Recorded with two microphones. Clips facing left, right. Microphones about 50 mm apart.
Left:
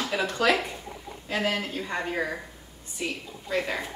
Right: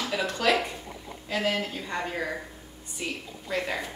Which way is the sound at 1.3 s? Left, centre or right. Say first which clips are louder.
Even; centre.